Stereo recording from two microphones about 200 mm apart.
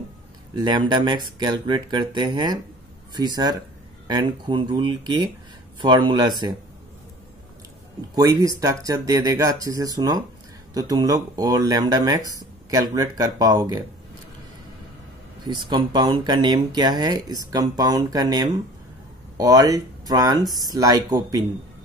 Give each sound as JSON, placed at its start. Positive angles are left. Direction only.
{"t": 0.6, "sound": "speech", "side_deg": -20}
{"t": 8.1, "sound": "speech", "side_deg": -15}
{"t": 15.4, "sound": "speech", "side_deg": -25}